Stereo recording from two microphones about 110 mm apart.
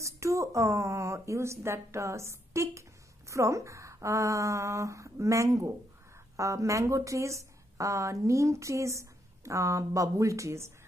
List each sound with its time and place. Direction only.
0.0 s speech: 30° right (ahead or behind)